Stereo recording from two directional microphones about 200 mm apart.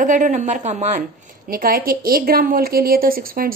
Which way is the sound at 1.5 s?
45° right (ahead or behind).